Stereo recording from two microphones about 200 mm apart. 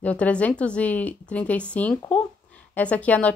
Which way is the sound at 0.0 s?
5° left (ahead or behind).